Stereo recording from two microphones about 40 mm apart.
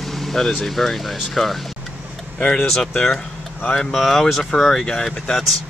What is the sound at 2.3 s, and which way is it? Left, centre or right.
Speech, left.